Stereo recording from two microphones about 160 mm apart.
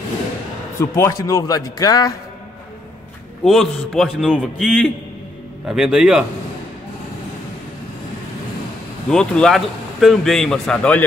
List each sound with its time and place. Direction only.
0.7 s a man's voice: 20° left (ahead or behind)
3.4 s a man's voice: centre (ahead or behind)
9.1 s a man's voice: 5° left (ahead or behind)